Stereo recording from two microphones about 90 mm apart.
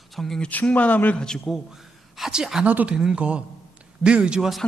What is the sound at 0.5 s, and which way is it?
Speech, 15° left (ahead or behind).